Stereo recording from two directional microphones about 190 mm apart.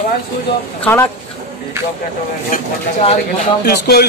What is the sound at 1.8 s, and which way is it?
Vehicle, 15° right (ahead or behind).